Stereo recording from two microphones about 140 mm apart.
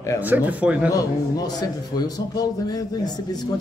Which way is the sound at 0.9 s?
25° left (ahead or behind).